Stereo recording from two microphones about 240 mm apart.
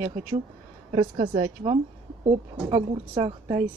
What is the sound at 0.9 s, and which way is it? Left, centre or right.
A woman's voice, right.